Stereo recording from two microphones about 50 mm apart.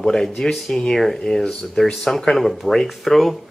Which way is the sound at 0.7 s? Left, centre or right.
Centre.